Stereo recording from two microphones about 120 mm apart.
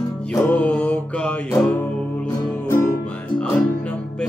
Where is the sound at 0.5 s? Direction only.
10° left (ahead or behind).